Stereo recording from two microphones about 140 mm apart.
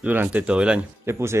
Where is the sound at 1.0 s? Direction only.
20° right (ahead or behind).